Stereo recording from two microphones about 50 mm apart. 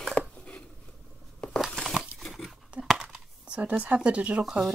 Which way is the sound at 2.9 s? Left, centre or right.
Centre.